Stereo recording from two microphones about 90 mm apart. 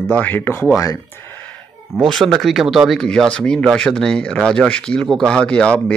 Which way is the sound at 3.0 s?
10° left (ahead or behind).